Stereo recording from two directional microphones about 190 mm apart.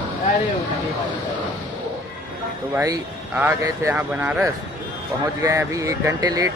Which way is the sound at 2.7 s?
15° right (ahead or behind).